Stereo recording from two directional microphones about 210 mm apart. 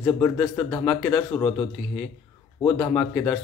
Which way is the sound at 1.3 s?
25° left (ahead or behind).